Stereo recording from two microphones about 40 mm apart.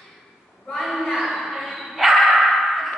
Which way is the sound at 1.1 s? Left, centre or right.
Centre.